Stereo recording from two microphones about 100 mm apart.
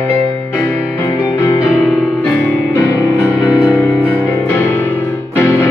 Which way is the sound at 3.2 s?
10° right (ahead or behind).